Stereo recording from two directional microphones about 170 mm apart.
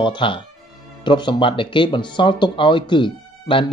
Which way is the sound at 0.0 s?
30° left (ahead or behind).